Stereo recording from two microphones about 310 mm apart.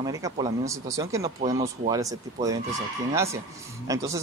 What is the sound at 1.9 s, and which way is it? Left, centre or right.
Speech, centre.